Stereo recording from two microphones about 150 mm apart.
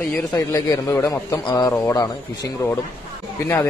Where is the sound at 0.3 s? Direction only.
20° left (ahead or behind).